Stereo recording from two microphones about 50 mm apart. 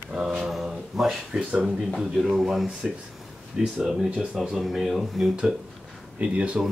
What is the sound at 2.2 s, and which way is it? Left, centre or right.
Speech, centre.